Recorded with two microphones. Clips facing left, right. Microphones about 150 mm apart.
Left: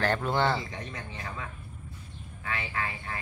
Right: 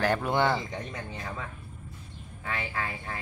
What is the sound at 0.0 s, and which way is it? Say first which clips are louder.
Speech: right 1 dB; 10° right (ahead or behind).